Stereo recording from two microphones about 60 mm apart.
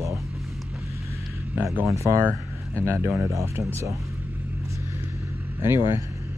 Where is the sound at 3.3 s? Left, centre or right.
Right.